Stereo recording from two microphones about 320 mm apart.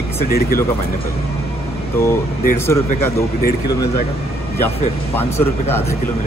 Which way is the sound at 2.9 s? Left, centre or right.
Left.